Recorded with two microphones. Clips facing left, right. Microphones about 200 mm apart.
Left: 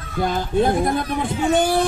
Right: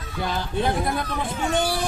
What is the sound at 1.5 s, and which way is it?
Speech, 50° left (ahead or behind).